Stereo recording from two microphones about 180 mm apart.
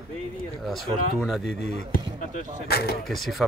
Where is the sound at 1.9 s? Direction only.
45° left (ahead or behind).